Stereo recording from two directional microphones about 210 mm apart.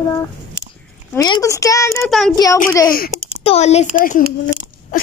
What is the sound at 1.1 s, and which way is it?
Speech, 15° left (ahead or behind).